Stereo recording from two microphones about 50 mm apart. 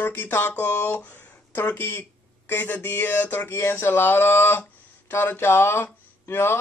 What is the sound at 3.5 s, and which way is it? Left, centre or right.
Speech, left.